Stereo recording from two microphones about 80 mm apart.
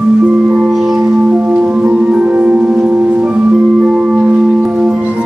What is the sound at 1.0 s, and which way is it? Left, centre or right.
Music, right.